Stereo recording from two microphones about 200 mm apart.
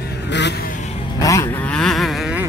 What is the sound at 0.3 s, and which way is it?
Vehicle, 60° left (ahead or behind).